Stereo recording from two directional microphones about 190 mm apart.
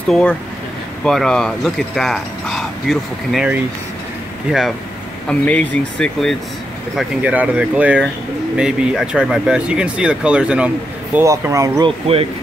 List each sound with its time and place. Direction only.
0.1 s speech: 5° left (ahead or behind)
7.0 s speech: 5° right (ahead or behind)